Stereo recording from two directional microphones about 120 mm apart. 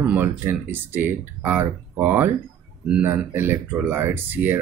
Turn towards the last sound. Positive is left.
turn(degrees=-15)  # may be behind; listen again after turning